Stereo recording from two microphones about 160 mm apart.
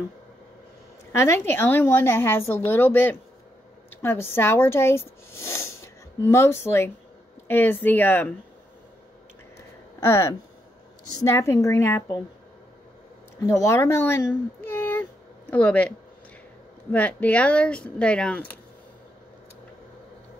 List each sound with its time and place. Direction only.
1.1 s a woman's voice: 15° left (ahead or behind)
9.9 s a woman's voice: 15° left (ahead or behind)
13.4 s a woman's voice: 20° left (ahead or behind)
16.9 s a woman's voice: 10° left (ahead or behind)